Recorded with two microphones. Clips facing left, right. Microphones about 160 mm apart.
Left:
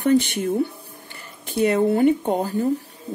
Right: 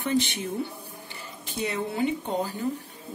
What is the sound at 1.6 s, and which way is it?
Speech, 55° left (ahead or behind).